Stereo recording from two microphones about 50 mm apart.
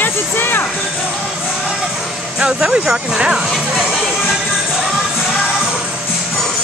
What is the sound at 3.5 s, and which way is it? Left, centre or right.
Music, centre.